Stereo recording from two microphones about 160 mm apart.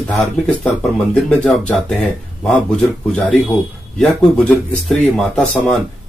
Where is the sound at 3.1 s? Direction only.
5° left (ahead or behind).